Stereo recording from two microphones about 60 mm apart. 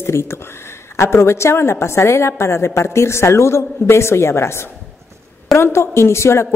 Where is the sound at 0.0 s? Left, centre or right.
Left.